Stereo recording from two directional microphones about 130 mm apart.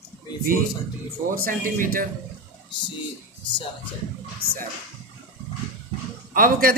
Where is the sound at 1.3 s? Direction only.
90° right.